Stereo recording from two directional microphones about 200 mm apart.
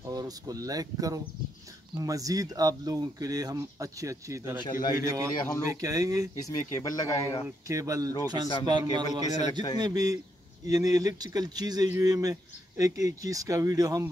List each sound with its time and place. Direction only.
0.1 s speech: 20° right (ahead or behind)
6.4 s speech: 15° left (ahead or behind)
7.4 s a man's voice: 15° right (ahead or behind)
9.5 s a man's voice: 20° left (ahead or behind)
9.8 s a man's voice: 20° right (ahead or behind)